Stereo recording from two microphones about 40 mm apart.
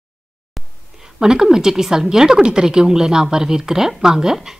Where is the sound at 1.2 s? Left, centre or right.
Centre.